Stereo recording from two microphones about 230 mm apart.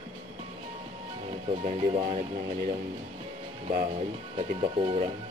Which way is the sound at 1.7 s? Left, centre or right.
Right.